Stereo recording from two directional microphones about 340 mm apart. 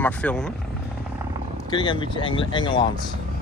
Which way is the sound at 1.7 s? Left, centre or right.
Centre.